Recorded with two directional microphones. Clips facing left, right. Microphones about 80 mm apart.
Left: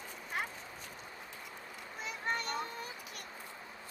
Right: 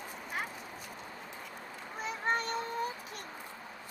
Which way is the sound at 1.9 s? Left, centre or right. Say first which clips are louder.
Right 5 dB; right.